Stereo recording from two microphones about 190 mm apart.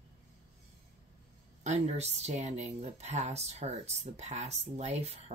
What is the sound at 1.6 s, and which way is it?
Speech, 35° right (ahead or behind).